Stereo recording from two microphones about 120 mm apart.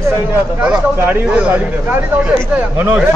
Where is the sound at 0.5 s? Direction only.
15° right (ahead or behind).